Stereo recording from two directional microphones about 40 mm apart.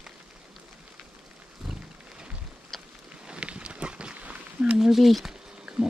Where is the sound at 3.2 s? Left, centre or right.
Right.